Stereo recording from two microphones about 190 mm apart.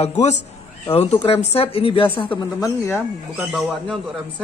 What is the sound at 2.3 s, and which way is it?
Speech, 15° left (ahead or behind).